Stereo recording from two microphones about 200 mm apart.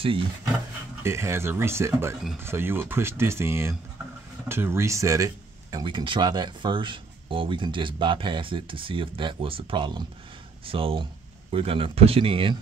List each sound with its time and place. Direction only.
1.0 s speech: 15° right (ahead or behind)